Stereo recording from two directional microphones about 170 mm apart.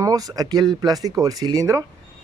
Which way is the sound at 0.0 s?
20° right (ahead or behind).